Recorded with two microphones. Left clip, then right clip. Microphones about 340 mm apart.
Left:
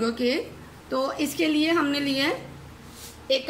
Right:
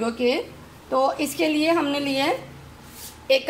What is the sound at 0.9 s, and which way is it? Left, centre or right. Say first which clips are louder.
Speech: right 5 dB; right.